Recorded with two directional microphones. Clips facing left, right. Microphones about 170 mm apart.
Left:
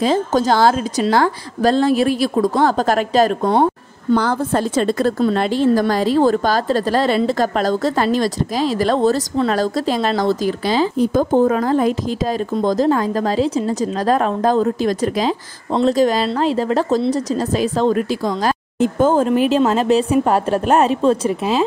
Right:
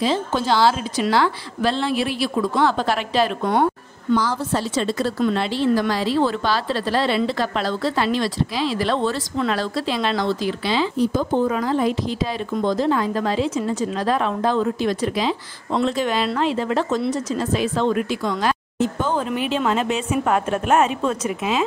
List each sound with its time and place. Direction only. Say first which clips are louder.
0.0 s a woman's voice: left 5 dB; 45° left (ahead or behind)
4.2 s a woman's voice: left 5 dB; 55° left (ahead or behind); by 21.6 s 30° left (ahead or behind)